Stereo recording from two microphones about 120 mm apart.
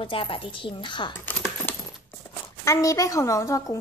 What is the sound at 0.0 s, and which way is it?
A woman's voice, 45° left (ahead or behind).